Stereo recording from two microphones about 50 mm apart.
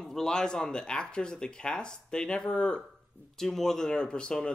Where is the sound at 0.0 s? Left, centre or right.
Centre.